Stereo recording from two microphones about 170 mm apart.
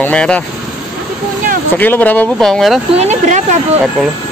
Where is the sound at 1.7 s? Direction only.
10° left (ahead or behind).